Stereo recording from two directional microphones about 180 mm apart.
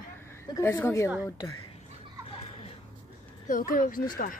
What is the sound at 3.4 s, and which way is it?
Speech, 50° left (ahead or behind).